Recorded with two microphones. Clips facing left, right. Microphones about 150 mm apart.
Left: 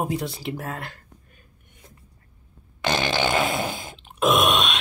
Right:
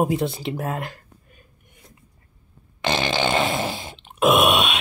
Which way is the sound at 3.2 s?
Centre (ahead or behind).